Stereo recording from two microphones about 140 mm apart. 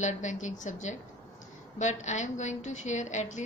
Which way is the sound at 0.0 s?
60° left (ahead or behind).